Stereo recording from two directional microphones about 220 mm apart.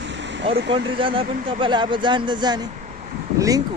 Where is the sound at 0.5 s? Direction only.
25° right (ahead or behind).